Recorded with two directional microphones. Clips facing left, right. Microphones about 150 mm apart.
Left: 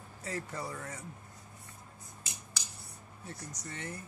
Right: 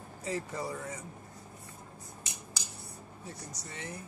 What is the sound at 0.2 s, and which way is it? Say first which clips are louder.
Speech: right 3 dB; 15° right (ahead or behind).